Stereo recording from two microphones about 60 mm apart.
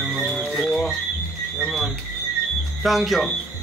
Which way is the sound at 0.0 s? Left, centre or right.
Centre.